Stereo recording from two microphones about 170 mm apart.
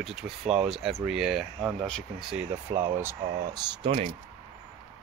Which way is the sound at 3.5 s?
25° right (ahead or behind).